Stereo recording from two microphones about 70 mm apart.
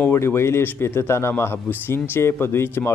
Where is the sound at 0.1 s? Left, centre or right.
Left.